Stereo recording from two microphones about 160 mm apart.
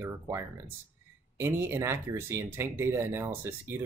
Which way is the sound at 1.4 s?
15° right (ahead or behind).